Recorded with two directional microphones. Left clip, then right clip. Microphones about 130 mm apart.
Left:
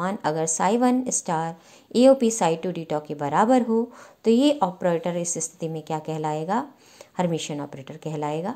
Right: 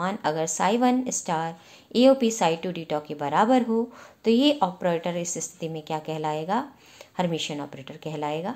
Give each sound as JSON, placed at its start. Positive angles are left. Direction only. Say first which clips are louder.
{"t": 0.0, "sound": "a woman's voice", "louder": "left 1 dB", "side_deg": 40}